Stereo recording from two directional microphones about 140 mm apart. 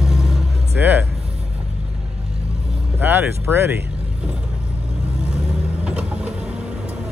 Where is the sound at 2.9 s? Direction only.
15° right (ahead or behind).